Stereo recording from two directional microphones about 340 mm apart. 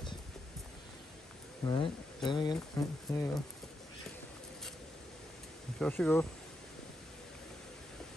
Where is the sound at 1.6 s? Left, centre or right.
Centre.